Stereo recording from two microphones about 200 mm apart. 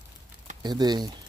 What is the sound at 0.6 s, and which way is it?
Speech, 20° right (ahead or behind).